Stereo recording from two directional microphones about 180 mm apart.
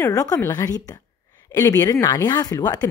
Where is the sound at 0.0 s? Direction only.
20° left (ahead or behind).